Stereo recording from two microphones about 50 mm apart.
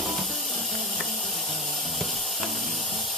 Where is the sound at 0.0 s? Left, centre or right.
Centre.